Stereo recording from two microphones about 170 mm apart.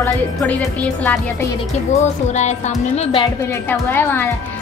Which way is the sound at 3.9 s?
10° left (ahead or behind).